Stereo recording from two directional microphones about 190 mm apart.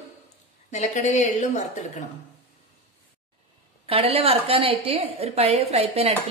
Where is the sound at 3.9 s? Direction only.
30° right (ahead or behind).